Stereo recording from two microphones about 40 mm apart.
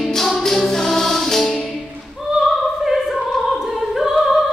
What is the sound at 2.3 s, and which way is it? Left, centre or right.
Opera, centre.